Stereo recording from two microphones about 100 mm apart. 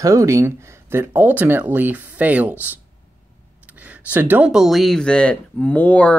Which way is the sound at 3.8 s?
15° right (ahead or behind).